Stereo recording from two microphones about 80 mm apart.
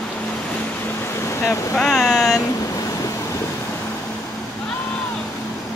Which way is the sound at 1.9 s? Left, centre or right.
Centre.